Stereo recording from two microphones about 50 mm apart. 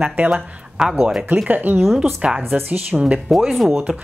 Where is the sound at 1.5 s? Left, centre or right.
Right.